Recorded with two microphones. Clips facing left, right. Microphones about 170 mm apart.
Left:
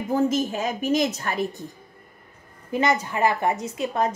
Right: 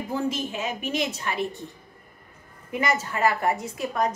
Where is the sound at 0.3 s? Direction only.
40° left (ahead or behind).